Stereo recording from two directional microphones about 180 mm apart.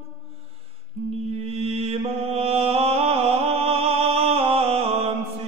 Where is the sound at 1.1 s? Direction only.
35° right (ahead or behind).